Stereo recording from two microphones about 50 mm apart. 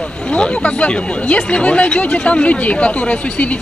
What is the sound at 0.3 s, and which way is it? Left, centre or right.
Speech, left.